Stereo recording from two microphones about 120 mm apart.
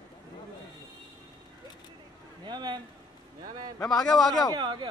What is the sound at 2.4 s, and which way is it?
Speech, 40° right (ahead or behind).